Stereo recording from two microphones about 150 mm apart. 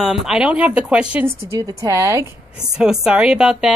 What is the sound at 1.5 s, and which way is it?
Speech, 20° right (ahead or behind).